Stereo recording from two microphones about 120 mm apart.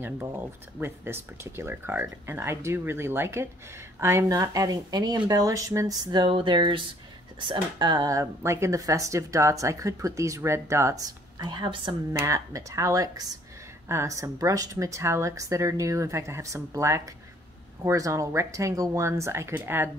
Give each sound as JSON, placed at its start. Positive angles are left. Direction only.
{"t": 0.0, "sound": "speech", "side_deg": -20}
{"t": 6.2, "sound": "speech", "side_deg": -45}
{"t": 12.2, "sound": "speech", "side_deg": -25}